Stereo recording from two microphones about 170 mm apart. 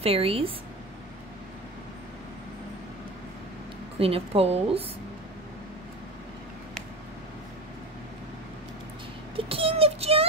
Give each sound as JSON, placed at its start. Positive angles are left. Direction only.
{"t": 0.0, "sound": "a woman's voice", "side_deg": -35}
{"t": 4.0, "sound": "a woman's voice", "side_deg": -35}
{"t": 9.4, "sound": "child singing", "side_deg": -35}